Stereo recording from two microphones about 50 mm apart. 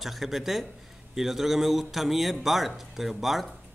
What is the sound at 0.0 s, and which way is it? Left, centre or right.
Speech, centre.